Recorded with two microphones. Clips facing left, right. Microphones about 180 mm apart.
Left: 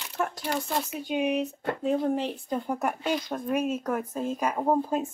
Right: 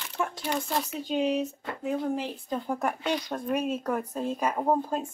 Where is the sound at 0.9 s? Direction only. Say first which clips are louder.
Even; 15° left (ahead or behind).